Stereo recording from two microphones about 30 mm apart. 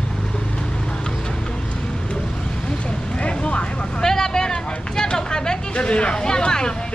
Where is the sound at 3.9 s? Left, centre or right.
Left.